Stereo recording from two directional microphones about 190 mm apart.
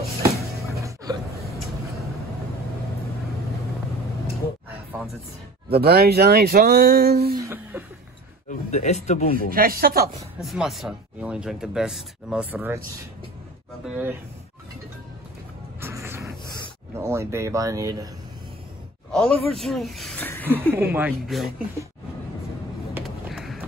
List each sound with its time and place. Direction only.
0.2 s music: 15° right (ahead or behind)
0.7 s a sound: 15° right (ahead or behind)
5.7 s speech: 55° right (ahead or behind)
7.4 s a sound: 10° right (ahead or behind)
8.5 s speech: 35° left (ahead or behind)
9.5 s speech: 50° right (ahead or behind)
10.4 s speech: centre (ahead or behind)
13.8 s speech: 10° right (ahead or behind)
15.8 s music: 15° right (ahead or behind)
16.9 s speech: 15° right (ahead or behind)
19.1 s speech: centre (ahead or behind)
20.7 s speech: 10° right (ahead or behind)
21.3 s speech: centre (ahead or behind)
22.9 s a sound: centre (ahead or behind)